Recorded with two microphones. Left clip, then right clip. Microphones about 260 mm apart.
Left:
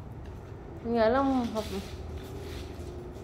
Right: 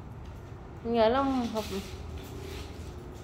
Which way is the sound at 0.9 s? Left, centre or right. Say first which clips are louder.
Even; centre.